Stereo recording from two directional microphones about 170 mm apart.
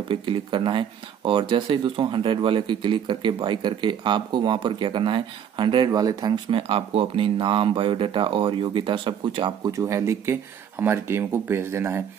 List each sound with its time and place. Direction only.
0.1 s speech: 30° right (ahead or behind); by 12.0 s 15° right (ahead or behind)